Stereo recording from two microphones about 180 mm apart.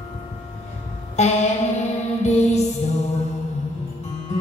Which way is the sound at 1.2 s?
40° left (ahead or behind).